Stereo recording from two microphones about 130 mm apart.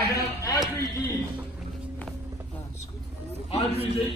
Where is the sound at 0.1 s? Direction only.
25° left (ahead or behind).